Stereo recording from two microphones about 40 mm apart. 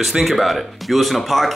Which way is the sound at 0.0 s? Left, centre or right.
Centre.